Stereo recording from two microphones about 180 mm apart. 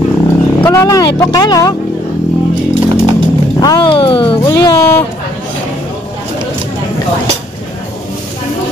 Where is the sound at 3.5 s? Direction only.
20° left (ahead or behind).